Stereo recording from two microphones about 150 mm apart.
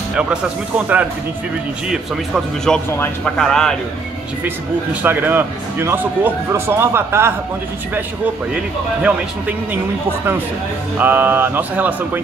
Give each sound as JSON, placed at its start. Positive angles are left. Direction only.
{"t": 0.1, "sound": "speech", "side_deg": -5}
{"t": 1.9, "sound": "a man's voice", "side_deg": 0}
{"t": 5.0, "sound": "speech", "side_deg": -15}
{"t": 11.0, "sound": "speech", "side_deg": -10}